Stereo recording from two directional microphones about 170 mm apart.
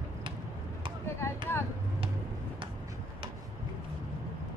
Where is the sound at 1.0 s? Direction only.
15° left (ahead or behind).